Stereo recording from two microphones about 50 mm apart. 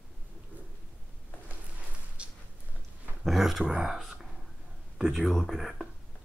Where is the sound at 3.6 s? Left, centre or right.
Centre.